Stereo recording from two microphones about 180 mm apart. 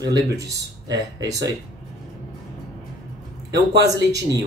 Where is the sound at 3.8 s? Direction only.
20° right (ahead or behind).